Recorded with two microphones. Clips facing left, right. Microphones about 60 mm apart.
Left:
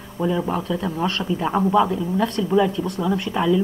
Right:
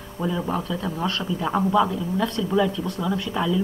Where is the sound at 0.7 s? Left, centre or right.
Left.